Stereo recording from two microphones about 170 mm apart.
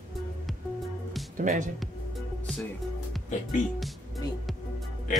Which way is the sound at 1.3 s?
45° right (ahead or behind).